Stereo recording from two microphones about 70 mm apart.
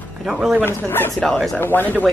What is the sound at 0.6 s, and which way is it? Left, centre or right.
Speech, left.